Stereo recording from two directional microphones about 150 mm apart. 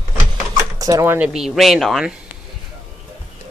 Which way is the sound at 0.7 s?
25° right (ahead or behind).